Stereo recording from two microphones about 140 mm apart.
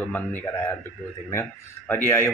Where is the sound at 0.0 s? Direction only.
15° left (ahead or behind).